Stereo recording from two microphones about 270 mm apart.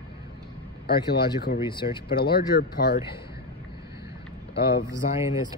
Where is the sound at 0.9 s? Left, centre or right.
Left.